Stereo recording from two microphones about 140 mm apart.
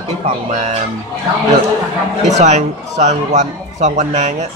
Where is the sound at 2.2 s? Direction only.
55° right (ahead or behind).